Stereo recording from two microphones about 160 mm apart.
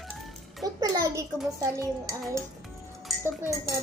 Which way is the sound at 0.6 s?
25° right (ahead or behind).